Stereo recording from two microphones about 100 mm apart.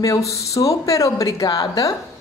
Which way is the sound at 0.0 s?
35° left (ahead or behind).